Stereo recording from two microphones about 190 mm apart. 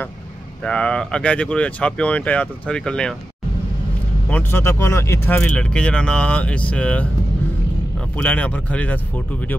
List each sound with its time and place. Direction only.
0.7 s speech: 5° left (ahead or behind)
4.3 s speech: 10° left (ahead or behind)
8.2 s speech: 5° left (ahead or behind)